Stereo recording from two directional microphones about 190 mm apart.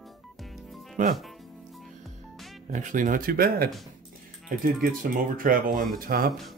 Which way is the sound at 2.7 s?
40° right (ahead or behind).